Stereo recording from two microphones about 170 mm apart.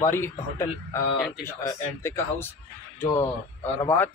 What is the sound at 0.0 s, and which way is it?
A man's voice, 15° left (ahead or behind).